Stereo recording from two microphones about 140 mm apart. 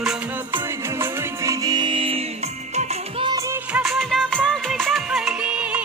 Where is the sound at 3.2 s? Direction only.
30° right (ahead or behind).